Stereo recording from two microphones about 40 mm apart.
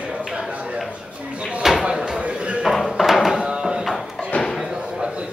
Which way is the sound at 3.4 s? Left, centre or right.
Right.